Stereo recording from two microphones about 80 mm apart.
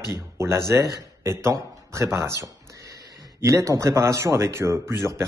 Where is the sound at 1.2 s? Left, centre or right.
Right.